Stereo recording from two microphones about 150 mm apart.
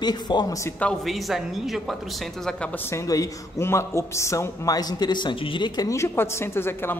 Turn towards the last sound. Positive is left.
turn(degrees=15)  # may be behind; listen again after turning